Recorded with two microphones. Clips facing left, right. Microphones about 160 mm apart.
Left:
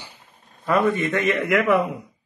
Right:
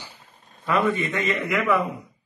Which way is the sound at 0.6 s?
45° left (ahead or behind).